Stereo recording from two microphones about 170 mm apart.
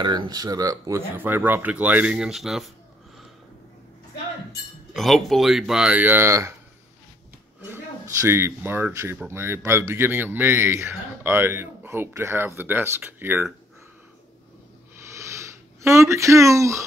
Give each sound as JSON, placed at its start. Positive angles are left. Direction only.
{"t": 0.0, "sound": "speech", "side_deg": -25}
{"t": 4.9, "sound": "speech", "side_deg": 0}
{"t": 7.7, "sound": "speech", "side_deg": -15}
{"t": 15.1, "sound": "a sound", "side_deg": -15}